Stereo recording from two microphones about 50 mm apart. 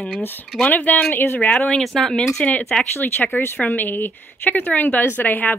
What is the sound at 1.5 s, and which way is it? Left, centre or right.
Speech, centre.